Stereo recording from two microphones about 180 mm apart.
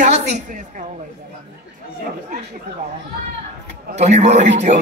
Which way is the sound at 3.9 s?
40° right (ahead or behind).